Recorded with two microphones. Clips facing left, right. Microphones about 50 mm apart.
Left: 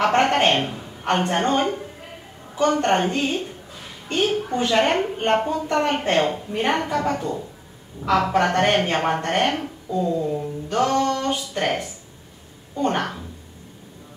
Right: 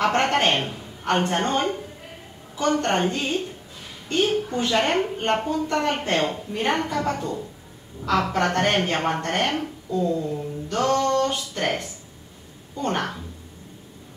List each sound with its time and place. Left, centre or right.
0.0 s a woman's voice: centre
2.8 s a woman's voice: centre
4.5 s a woman's voice: centre
12.9 s a woman's voice: centre